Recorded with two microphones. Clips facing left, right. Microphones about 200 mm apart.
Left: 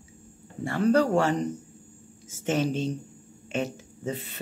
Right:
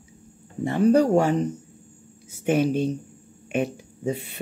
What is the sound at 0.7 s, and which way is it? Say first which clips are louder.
Speech: right 4 dB; 15° right (ahead or behind).